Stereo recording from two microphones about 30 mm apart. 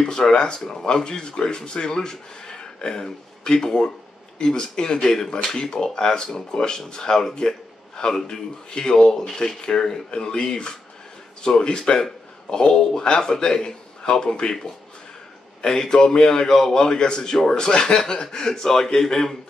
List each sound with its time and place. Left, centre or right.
0.3 s speech: left